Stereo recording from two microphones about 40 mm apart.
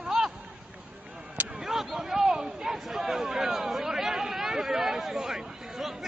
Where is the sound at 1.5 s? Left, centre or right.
Centre.